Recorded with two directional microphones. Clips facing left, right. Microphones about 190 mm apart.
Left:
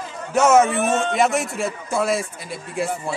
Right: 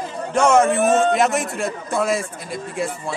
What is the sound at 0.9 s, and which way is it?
Speech, 40° right (ahead or behind).